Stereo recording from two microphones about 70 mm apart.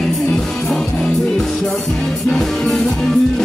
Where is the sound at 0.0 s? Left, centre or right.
Centre.